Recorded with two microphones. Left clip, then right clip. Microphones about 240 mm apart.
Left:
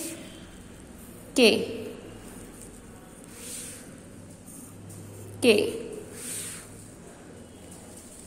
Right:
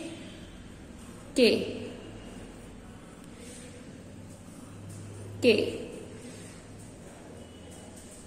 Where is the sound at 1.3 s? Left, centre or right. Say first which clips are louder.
Left 3 dB; centre.